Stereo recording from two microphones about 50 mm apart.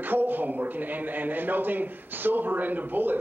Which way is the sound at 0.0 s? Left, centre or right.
Right.